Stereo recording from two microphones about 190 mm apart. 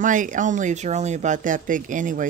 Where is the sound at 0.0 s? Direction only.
45° right (ahead or behind).